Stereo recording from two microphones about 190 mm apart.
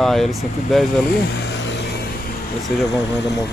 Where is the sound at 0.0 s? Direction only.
Centre (ahead or behind).